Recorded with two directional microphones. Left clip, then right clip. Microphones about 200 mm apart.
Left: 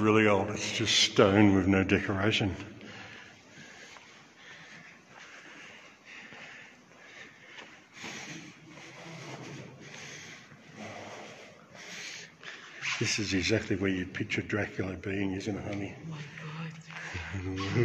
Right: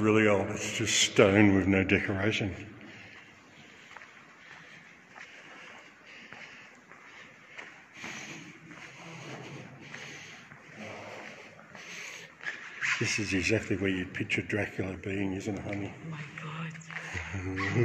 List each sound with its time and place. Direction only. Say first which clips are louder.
0.0 s speech: even; centre (ahead or behind)
2.2 s a man's voice: left 2 dB; 15° left (ahead or behind)
9.1 s a sound: even; 15° left (ahead or behind)
12.5 s a sound: right 8 dB; 15° right (ahead or behind)
12.8 s speech: right 2 dB; centre (ahead or behind)
17.0 s music: left 1 dB; 5° right (ahead or behind)